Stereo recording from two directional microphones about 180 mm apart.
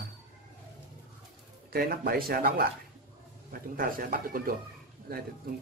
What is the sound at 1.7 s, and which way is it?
Speech, 55° right (ahead or behind).